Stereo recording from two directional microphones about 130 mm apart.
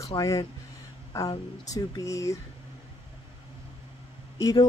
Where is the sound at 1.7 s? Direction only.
25° left (ahead or behind).